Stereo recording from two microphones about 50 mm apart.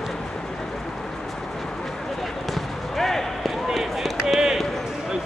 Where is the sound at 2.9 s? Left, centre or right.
Centre.